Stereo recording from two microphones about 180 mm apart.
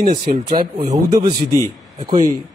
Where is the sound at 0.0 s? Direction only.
55° right (ahead or behind).